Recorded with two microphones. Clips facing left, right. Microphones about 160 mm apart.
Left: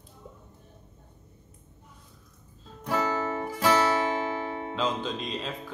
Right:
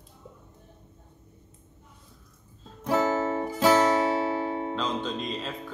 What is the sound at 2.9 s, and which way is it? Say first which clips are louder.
Music: right 4 dB; 25° right (ahead or behind).